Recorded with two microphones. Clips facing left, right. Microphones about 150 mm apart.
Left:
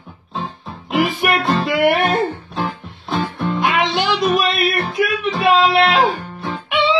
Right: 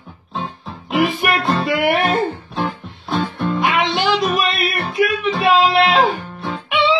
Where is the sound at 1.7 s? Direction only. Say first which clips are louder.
Left 4 dB; 45° left (ahead or behind).